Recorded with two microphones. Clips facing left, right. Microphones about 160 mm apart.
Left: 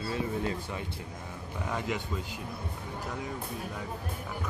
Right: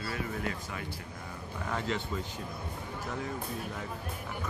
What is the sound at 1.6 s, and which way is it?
Speech, 15° left (ahead or behind).